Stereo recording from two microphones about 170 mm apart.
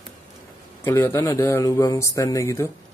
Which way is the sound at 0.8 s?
15° left (ahead or behind).